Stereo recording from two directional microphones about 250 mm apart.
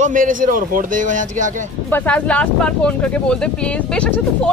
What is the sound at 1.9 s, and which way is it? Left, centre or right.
Speech, centre.